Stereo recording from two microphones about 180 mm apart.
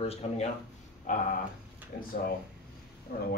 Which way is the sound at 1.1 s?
45° left (ahead or behind).